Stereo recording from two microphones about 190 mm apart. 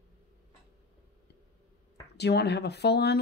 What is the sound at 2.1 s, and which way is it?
Speech, 60° left (ahead or behind).